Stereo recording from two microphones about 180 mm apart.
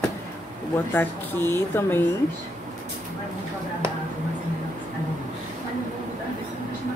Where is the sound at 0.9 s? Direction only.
10° left (ahead or behind).